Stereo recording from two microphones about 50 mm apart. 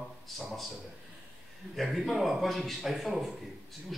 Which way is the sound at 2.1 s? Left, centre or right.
Centre.